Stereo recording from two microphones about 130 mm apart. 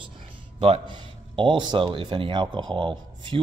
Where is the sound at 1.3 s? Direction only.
40° right (ahead or behind).